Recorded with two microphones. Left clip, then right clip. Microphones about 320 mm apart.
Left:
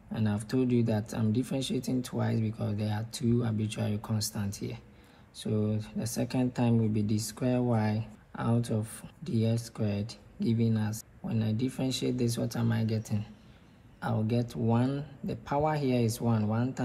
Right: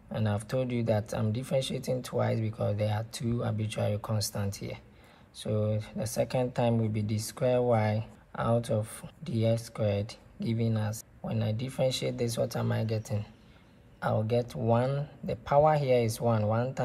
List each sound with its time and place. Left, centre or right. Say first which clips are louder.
0.1 s speech: right 1 dB; right